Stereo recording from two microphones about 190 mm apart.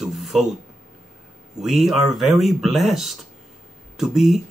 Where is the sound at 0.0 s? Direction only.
Centre (ahead or behind).